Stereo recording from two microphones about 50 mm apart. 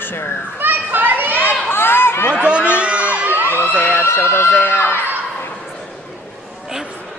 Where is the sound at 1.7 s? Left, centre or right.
Left.